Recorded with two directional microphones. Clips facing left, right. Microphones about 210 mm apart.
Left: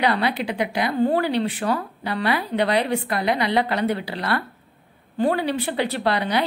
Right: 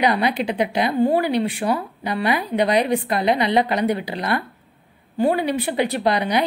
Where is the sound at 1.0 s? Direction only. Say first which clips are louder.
Right 1 dB; 10° right (ahead or behind).